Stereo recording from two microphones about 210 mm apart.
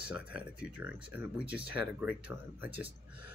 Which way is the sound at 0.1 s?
5° right (ahead or behind).